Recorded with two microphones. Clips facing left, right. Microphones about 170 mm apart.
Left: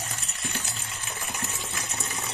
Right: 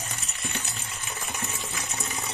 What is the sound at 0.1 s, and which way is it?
Water, centre (ahead or behind).